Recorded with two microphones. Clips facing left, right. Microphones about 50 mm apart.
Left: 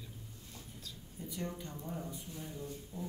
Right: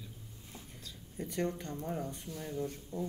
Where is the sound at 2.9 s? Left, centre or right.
Centre.